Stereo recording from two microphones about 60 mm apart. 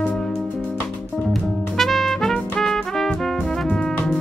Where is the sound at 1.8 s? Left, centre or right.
Centre.